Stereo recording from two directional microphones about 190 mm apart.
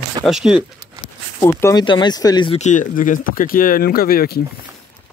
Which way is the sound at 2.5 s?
40° left (ahead or behind).